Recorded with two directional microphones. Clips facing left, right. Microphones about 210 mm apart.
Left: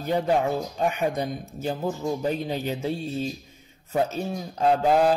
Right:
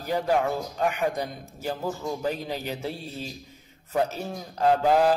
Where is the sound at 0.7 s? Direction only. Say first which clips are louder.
Right 1 dB; 20° left (ahead or behind).